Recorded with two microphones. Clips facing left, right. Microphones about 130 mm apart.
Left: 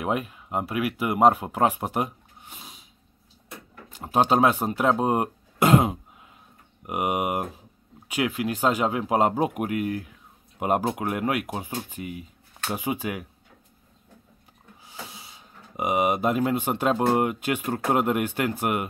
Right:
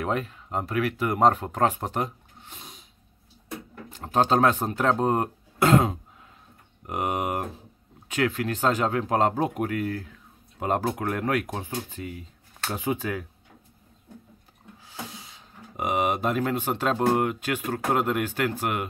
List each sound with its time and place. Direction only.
0.0 s speech: 10° left (ahead or behind)
3.9 s speech: 10° left (ahead or behind)
14.9 s speech: 10° left (ahead or behind)